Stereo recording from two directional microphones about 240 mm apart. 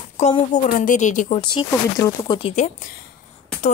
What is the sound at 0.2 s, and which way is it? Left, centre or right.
A woman's voice, left.